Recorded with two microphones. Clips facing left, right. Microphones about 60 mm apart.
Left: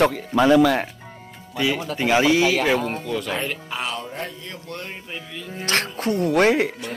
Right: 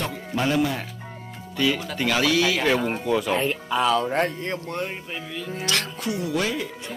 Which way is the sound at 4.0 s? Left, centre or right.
Right.